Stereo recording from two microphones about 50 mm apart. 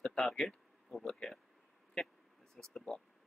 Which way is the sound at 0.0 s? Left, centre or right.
Centre.